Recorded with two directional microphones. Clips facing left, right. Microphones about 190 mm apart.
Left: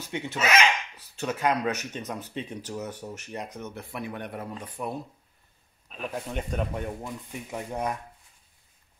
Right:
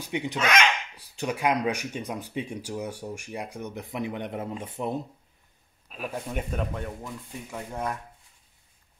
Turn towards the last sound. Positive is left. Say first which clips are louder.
# left 2 dB
turn(degrees=20)  # may be behind; listen again after turning